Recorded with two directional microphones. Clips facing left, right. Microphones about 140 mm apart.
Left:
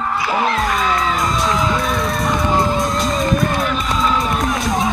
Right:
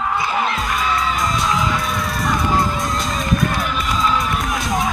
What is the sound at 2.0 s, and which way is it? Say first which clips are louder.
Music: left 2 dB; 20° left (ahead or behind).